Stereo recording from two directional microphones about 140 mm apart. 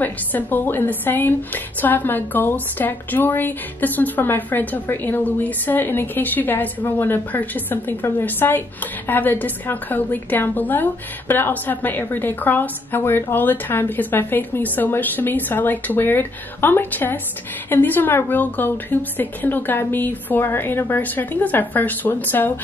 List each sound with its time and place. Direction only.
0.0 s a woman's voice: 15° left (ahead or behind)